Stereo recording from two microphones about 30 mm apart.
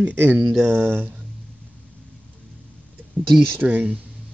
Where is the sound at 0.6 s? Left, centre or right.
Right.